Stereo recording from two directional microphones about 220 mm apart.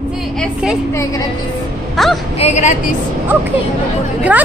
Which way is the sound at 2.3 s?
30° left (ahead or behind).